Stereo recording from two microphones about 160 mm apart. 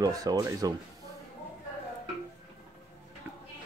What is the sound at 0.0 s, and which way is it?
Speech, 25° right (ahead or behind).